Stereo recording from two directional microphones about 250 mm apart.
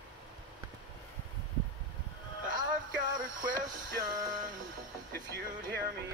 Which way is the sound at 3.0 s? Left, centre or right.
Right.